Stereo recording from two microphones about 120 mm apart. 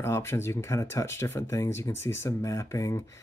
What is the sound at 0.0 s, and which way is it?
Speech, 20° left (ahead or behind).